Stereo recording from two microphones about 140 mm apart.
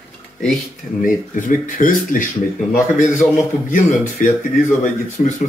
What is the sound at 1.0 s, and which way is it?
A man's voice, 70° left (ahead or behind).